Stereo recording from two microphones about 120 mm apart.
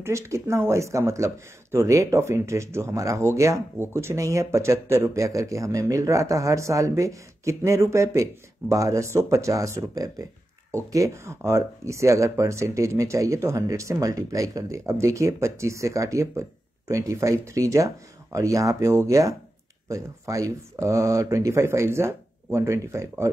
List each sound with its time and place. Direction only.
0.0 s speech: 25° right (ahead or behind)